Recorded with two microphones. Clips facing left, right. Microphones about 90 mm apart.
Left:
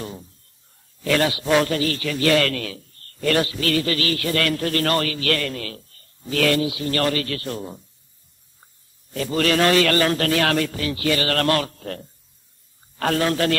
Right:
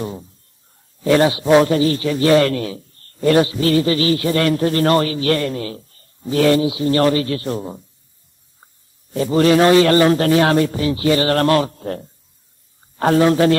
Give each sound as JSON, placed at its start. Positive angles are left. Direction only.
{"t": 0.0, "sound": "a man's voice", "side_deg": -20}
{"t": 9.1, "sound": "a man's voice", "side_deg": -25}